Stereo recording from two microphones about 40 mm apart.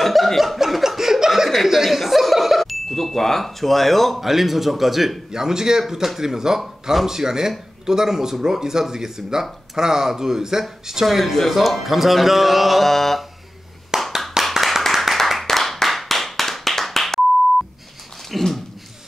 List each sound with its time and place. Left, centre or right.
0.0 s chuckle: centre
1.5 s speech: centre
6.6 s speech: centre
7.1 s speech: centre
13.9 s clapping: centre
14.5 s clapping: centre
18.3 s a sound: centre